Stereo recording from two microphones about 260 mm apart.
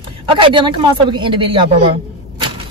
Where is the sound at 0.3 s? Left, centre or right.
Centre.